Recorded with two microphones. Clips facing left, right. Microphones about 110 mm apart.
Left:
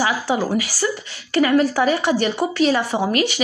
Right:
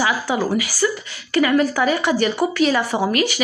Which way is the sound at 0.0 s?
30° left (ahead or behind).